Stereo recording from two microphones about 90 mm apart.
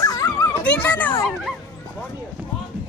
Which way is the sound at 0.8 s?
20° left (ahead or behind).